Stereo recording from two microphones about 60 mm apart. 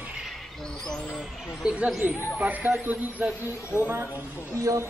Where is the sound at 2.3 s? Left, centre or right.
Right.